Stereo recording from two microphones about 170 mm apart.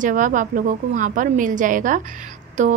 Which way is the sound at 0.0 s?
50° right (ahead or behind).